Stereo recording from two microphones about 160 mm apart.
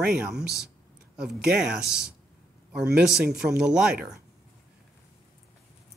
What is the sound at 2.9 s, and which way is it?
Speech, 5° right (ahead or behind).